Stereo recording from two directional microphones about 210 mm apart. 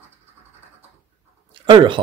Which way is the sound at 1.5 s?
25° right (ahead or behind).